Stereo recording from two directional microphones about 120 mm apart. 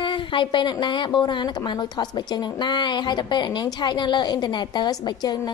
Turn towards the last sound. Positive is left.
turn(degrees=35)  # may be behind; listen again after turning